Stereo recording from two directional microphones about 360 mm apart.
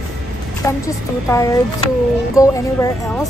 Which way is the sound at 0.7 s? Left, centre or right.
Centre.